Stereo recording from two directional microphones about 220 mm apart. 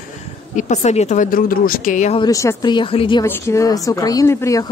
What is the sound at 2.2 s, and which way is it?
Speech, 15° left (ahead or behind).